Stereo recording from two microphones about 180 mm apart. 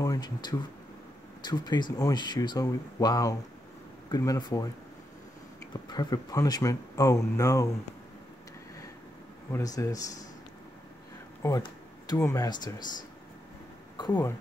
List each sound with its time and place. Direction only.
0.0 s speech: 20° left (ahead or behind)
5.7 s speech: 25° left (ahead or behind)
9.5 s speech: 20° left (ahead or behind)
11.4 s a sound: 20° left (ahead or behind)
12.2 s speech: 15° left (ahead or behind)